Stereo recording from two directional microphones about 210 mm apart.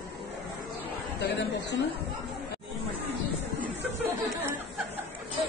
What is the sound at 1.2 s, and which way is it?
Chatter, 55° left (ahead or behind).